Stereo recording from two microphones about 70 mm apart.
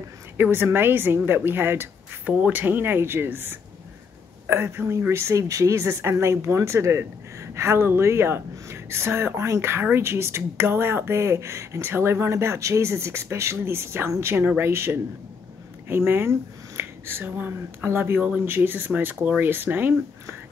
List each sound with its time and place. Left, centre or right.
0.4 s a woman's voice: right
2.2 s speech: centre
2.5 s a woman's voice: right